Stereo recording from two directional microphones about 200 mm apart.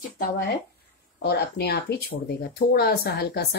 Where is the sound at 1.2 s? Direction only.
55° left (ahead or behind).